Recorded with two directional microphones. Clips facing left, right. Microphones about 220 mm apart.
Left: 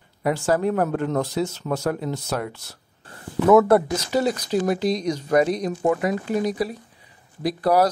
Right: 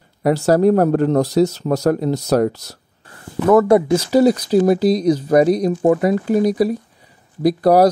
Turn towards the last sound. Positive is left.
turn(degrees=-40)  # may be behind; listen again after turning